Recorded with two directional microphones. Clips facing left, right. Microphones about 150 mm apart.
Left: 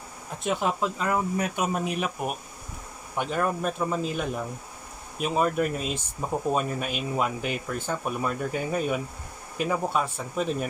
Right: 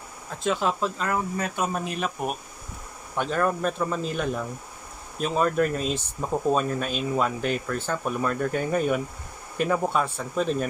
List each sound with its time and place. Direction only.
0.4 s speech: 20° left (ahead or behind)
3.2 s speech: 10° left (ahead or behind)